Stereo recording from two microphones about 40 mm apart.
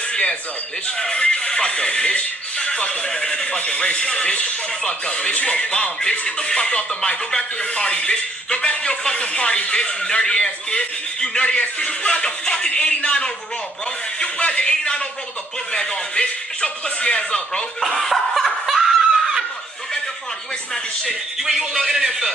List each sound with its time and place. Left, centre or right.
0.1 s a sound: left
0.9 s speech: left
17.9 s snicker: centre
20.7 s speech: centre
21.4 s a man's voice: centre